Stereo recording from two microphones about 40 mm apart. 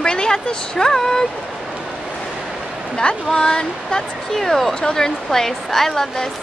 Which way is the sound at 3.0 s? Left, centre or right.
Left.